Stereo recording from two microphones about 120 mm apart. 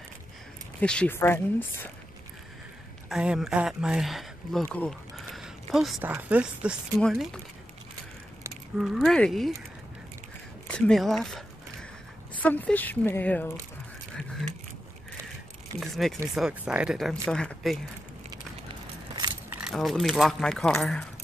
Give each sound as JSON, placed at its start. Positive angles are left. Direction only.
{"t": 0.7, "sound": "speech", "side_deg": 10}
{"t": 3.1, "sound": "speech", "side_deg": -5}
{"t": 4.7, "sound": "a sound", "side_deg": 5}
{"t": 6.0, "sound": "speech", "side_deg": -15}
{"t": 7.0, "sound": "speech", "side_deg": 0}
{"t": 8.7, "sound": "speech", "side_deg": 0}
{"t": 10.7, "sound": "speech", "side_deg": 5}
{"t": 12.4, "sound": "speech", "side_deg": 15}
{"t": 15.8, "sound": "speech", "side_deg": 0}
{"t": 19.6, "sound": "speech", "side_deg": 0}